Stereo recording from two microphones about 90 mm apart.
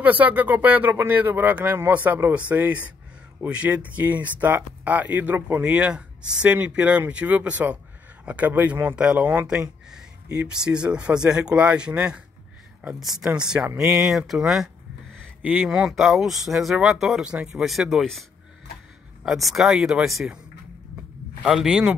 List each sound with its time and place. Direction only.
0.0 s speech: 20° right (ahead or behind); by 18.2 s centre (ahead or behind)
19.2 s speech: centre (ahead or behind)
21.4 s speech: 10° right (ahead or behind)